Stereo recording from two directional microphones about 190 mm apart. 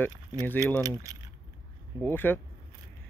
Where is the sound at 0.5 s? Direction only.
10° left (ahead or behind).